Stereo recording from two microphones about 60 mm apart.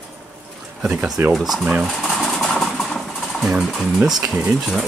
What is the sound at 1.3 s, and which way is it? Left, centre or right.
Speech, centre.